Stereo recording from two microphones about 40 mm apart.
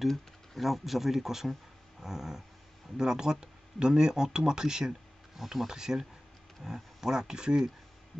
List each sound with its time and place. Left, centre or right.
0.6 s speech: centre
5.4 s speech: centre